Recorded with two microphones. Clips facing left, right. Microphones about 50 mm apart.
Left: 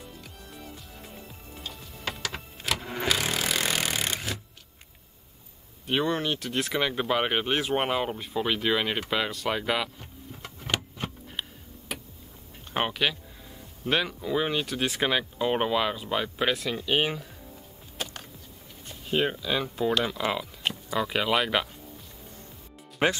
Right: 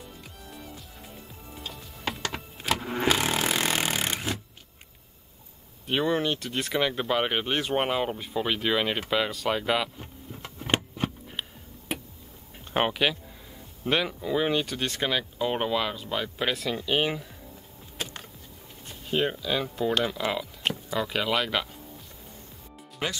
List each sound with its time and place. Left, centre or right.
0.4 s music: centre
3.1 s a sound: right
5.9 s speech: centre
9.9 s vehicle: centre
11.3 s tick-tock: centre
12.7 s speech: centre
18.9 s speech: centre
23.0 s speech: left